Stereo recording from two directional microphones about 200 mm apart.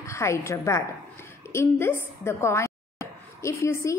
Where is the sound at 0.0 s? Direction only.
15° left (ahead or behind).